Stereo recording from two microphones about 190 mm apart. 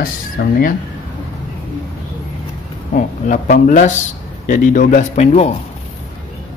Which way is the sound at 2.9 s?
45° left (ahead or behind).